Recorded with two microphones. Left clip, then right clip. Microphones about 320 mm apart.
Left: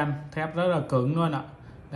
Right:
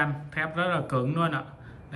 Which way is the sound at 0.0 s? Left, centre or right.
Centre.